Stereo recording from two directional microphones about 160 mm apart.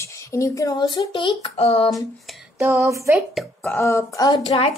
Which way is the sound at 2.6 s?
20° right (ahead or behind).